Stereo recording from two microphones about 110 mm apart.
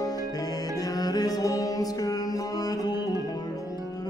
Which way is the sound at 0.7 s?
35° left (ahead or behind).